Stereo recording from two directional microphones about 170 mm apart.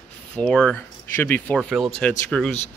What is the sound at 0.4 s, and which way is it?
Speech, 5° left (ahead or behind).